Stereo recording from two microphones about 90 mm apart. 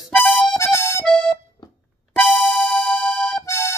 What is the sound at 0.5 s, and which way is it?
Music, 30° left (ahead or behind).